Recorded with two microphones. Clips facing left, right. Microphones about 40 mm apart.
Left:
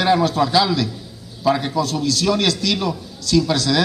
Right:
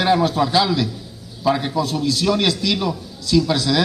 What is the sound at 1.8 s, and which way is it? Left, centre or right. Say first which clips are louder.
A man's voice: even; centre.